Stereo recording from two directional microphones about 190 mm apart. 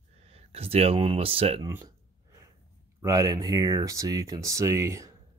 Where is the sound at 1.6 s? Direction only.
20° right (ahead or behind).